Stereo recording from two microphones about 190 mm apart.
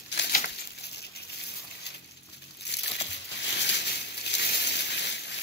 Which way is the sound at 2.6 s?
65° left (ahead or behind).